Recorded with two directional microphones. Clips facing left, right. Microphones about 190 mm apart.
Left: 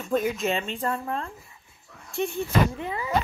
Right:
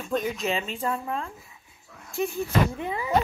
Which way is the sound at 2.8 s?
20° right (ahead or behind).